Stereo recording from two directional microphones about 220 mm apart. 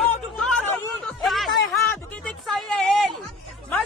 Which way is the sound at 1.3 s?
Centre (ahead or behind).